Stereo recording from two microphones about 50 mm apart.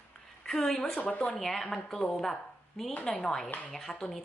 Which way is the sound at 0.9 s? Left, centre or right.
Left.